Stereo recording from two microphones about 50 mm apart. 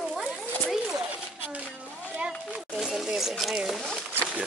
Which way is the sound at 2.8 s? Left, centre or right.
Centre.